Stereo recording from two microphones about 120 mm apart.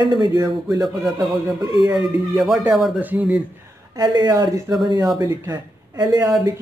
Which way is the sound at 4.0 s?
35° right (ahead or behind).